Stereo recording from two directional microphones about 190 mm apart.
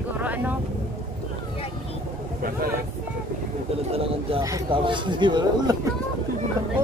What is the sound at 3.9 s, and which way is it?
Speech, 30° right (ahead or behind).